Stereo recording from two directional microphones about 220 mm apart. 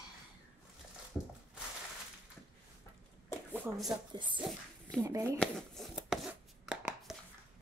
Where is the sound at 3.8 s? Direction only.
20° right (ahead or behind).